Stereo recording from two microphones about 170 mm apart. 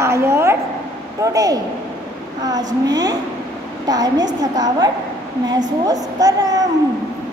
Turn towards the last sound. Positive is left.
turn(degrees=-20)  # may be behind; listen again after turning